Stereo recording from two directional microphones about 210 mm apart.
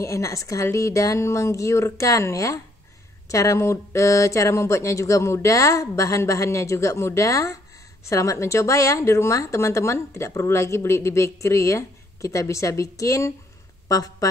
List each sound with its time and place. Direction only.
0.0 s speech: 15° left (ahead or behind)